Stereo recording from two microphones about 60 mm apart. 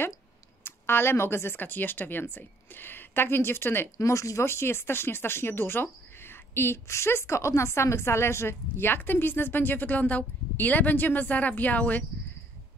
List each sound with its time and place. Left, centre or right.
0.7 s speech: left
4.0 s speech: left